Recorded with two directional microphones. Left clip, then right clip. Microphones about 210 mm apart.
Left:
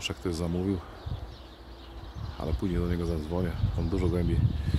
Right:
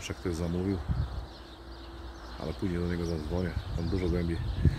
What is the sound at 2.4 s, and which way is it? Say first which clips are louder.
Speech: left 2 dB; 20° left (ahead or behind).